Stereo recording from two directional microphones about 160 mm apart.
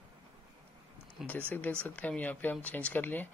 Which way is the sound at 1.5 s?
10° left (ahead or behind).